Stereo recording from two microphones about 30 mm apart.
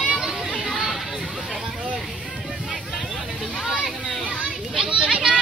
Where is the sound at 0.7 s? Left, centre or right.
Centre.